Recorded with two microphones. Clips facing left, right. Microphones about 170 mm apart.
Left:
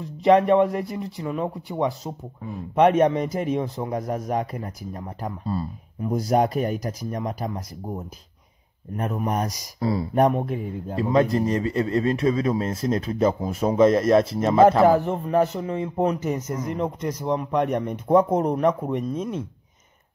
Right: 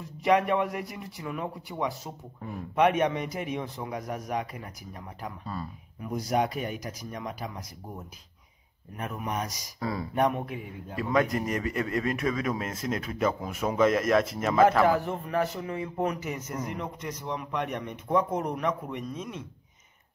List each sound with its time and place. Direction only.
0.2 s speech: 30° left (ahead or behind)
16.3 s a man's voice: 10° right (ahead or behind)
16.6 s speech: 35° left (ahead or behind)